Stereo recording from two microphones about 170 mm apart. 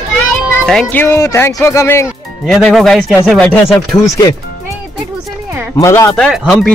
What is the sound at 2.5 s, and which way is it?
Speech, centre (ahead or behind).